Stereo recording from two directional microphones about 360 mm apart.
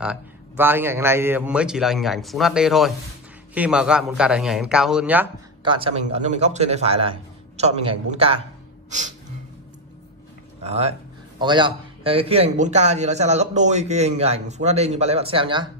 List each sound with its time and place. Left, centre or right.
0.0 s a man's voice: centre
10.6 s a man's voice: centre